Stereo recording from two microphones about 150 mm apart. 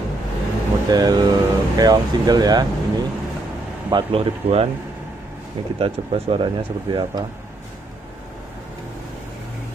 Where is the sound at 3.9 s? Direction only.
35° right (ahead or behind).